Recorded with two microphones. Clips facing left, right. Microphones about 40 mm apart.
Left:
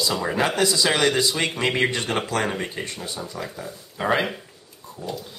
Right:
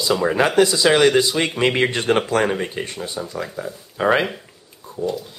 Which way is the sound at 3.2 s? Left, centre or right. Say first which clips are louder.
Right 5 dB; centre.